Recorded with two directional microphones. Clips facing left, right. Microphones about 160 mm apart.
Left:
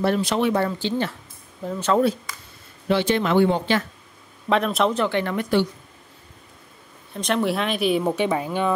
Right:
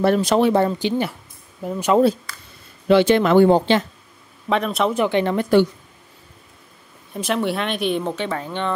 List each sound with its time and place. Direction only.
0.0 s speech: 45° right (ahead or behind)
0.6 s speech: 20° right (ahead or behind)
2.9 s speech: 80° right
3.3 s speech: 40° right (ahead or behind)
4.5 s speech: centre (ahead or behind)
4.9 s speech: 15° right (ahead or behind)
7.2 s speech: centre (ahead or behind)